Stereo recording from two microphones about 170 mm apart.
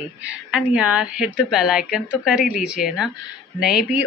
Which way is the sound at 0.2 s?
5° right (ahead or behind).